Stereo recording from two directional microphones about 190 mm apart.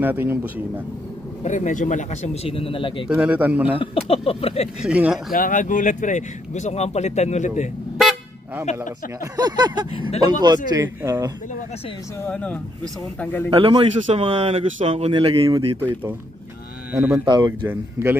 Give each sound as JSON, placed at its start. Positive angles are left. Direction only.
{"t": 0.0, "sound": "a man's voice", "side_deg": -10}
{"t": 1.4, "sound": "speech", "side_deg": 40}
{"t": 3.1, "sound": "a man's voice", "side_deg": -5}
{"t": 3.7, "sound": "speech", "side_deg": 30}
{"t": 4.8, "sound": "speech", "side_deg": -5}
{"t": 5.3, "sound": "speech", "side_deg": 45}
{"t": 9.2, "sound": "a man's voice", "side_deg": -20}
{"t": 12.3, "sound": "speech", "side_deg": 5}
{"t": 13.5, "sound": "speech", "side_deg": -25}
{"t": 15.8, "sound": "a man's voice", "side_deg": -10}
{"t": 17.3, "sound": "a man's voice", "side_deg": -20}